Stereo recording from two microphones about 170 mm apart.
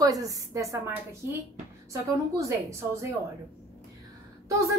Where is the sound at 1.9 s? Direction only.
20° right (ahead or behind).